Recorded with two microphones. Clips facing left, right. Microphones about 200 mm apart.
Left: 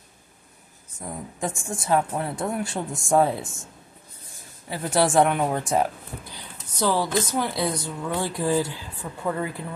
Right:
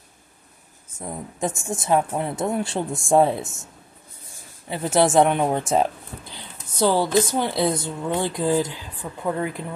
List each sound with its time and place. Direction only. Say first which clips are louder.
0.9 s speech: right 2 dB; 25° right (ahead or behind)
4.6 s speech: right 3 dB; 20° right (ahead or behind)